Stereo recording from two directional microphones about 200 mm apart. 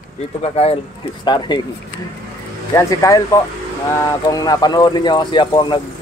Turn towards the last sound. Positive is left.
turn(degrees=25)  # may be behind; listen again after turning